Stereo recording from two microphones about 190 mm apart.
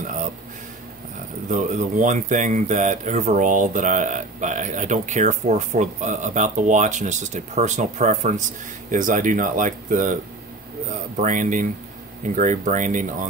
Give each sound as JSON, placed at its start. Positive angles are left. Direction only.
{"t": 1.5, "sound": "speech", "side_deg": -40}